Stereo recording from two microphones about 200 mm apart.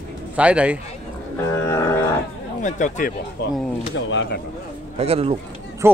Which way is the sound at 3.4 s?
55° left (ahead or behind).